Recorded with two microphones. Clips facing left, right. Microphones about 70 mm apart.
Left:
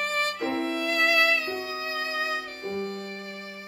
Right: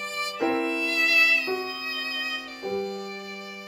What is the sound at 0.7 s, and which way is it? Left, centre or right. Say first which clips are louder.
Music: left 2 dB; left.